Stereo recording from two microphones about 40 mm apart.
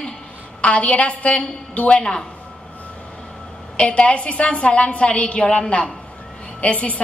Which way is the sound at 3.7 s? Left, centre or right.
Left.